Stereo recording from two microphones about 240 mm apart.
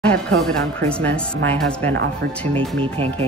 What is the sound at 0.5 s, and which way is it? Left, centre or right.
Speech, centre.